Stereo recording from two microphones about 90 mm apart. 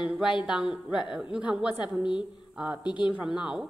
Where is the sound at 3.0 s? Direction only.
10° right (ahead or behind).